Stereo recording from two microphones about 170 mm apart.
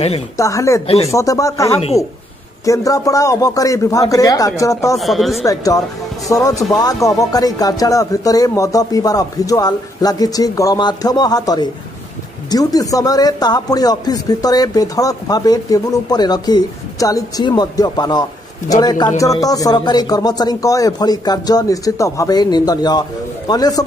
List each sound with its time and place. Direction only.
0.4 s speech: 20° left (ahead or behind)
0.8 s speech: 35° left (ahead or behind)
1.1 s speech: 20° left (ahead or behind)
4.9 s speech: centre (ahead or behind)
5.5 s speech: 20° left (ahead or behind)